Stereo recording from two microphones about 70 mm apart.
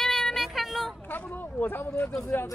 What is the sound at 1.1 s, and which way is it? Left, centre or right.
Speech, left.